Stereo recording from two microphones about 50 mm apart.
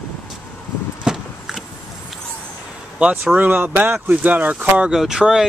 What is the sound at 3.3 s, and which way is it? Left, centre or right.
Speech, right.